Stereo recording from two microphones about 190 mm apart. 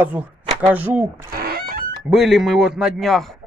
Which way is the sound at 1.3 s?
50° right (ahead or behind).